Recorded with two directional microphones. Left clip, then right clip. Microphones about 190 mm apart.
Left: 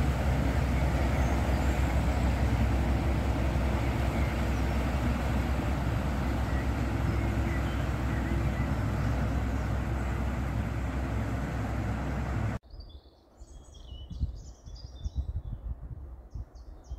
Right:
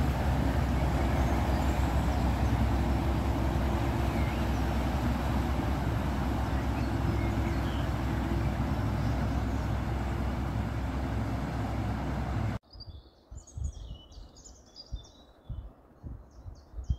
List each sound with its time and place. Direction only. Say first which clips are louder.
0.0 s vehicle: even; 30° left (ahead or behind)